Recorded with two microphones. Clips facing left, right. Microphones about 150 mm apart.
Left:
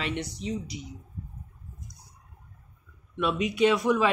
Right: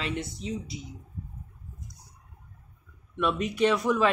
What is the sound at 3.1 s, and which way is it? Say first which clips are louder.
Speech: left 1 dB; centre (ahead or behind).